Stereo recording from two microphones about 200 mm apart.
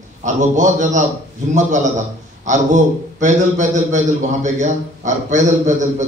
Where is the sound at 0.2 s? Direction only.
40° right (ahead or behind).